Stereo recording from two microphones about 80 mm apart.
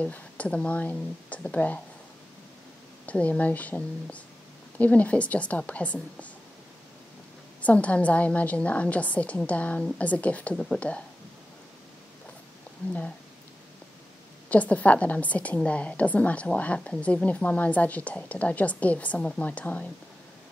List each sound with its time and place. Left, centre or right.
0.0 s a woman's voice: centre
3.1 s a woman's voice: centre
7.6 s a woman's voice: centre
14.5 s a woman's voice: centre